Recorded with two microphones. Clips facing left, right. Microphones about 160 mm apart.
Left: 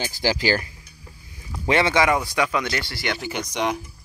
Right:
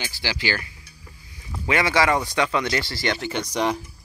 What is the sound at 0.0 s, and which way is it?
Speech, 40° left (ahead or behind).